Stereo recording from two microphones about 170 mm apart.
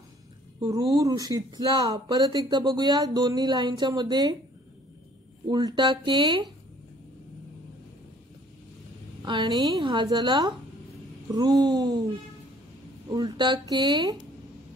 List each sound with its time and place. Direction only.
0.6 s speech: 25° right (ahead or behind)
5.5 s speech: 25° right (ahead or behind)
9.2 s speech: 25° right (ahead or behind)
13.1 s speech: 25° right (ahead or behind)